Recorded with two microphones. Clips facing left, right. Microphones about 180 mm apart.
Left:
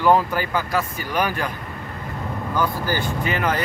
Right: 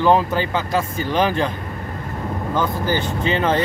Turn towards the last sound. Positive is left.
turn(degrees=-25)  # may be behind; listen again after turning